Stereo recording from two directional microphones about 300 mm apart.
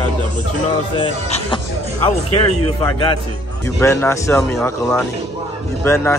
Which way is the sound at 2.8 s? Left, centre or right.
Centre.